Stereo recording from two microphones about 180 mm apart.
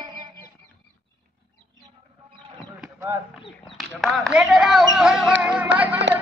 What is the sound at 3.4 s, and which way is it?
Speech, 30° left (ahead or behind).